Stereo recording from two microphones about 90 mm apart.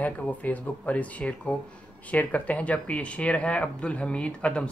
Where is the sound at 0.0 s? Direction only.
15° left (ahead or behind).